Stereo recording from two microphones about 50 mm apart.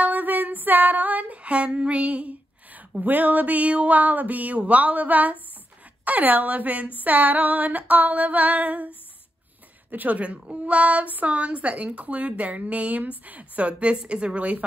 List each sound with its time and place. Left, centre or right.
0.0 s female singing: right
9.8 s a woman's voice: right